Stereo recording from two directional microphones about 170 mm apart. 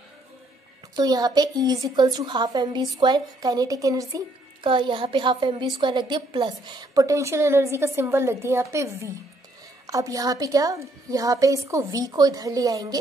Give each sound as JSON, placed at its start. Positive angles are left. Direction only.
{"t": 0.9, "sound": "a woman's voice", "side_deg": -25}